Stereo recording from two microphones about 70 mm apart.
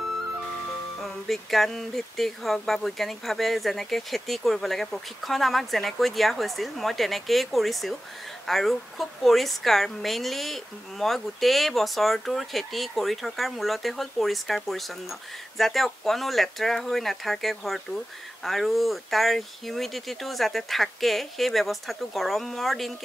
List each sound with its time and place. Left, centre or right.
1.0 s a woman's voice: centre